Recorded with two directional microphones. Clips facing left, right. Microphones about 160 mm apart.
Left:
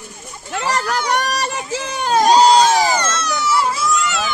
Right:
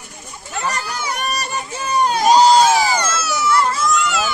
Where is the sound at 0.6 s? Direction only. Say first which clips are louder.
Left 4 dB; 90° left.